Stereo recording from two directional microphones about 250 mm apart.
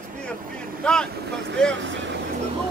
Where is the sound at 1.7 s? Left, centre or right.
Right.